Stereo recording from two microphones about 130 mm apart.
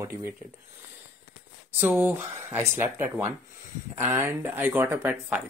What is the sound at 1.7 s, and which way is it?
Speech, 15° right (ahead or behind).